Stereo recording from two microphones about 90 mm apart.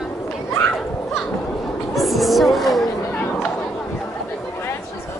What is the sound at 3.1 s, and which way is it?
Chatter, 15° left (ahead or behind).